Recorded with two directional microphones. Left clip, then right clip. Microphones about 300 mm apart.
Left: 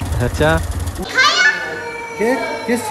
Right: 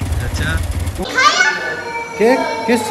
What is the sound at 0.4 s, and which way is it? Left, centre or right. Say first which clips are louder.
Speech: left 8 dB; centre.